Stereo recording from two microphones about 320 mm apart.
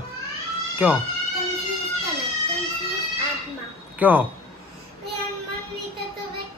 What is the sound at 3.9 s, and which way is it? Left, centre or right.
Speech, centre.